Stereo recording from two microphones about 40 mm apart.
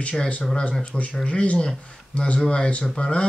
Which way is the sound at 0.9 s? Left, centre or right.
Left.